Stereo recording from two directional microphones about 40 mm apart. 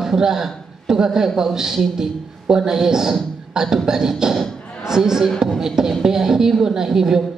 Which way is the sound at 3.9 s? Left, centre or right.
Centre.